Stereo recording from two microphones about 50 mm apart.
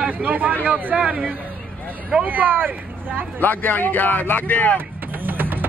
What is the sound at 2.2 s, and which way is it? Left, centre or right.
Speech, right.